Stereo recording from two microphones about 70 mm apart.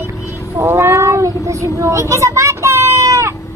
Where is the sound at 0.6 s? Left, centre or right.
Right.